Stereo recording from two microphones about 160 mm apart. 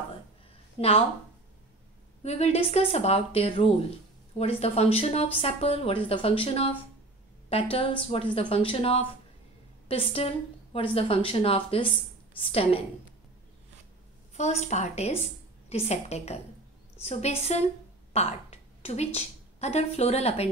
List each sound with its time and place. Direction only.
0.7 s speech: 40° left (ahead or behind)
2.2 s speech: 45° left (ahead or behind)
14.3 s a woman's voice: 45° left (ahead or behind)